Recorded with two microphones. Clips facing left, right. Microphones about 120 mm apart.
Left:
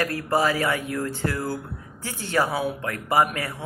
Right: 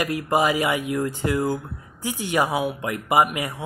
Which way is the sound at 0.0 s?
15° right (ahead or behind).